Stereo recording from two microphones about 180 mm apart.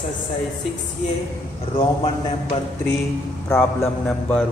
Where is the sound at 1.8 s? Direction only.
30° left (ahead or behind).